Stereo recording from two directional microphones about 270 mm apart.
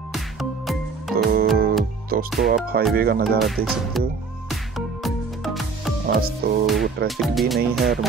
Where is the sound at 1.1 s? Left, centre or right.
Right.